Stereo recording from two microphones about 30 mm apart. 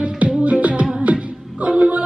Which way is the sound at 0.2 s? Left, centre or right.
Right.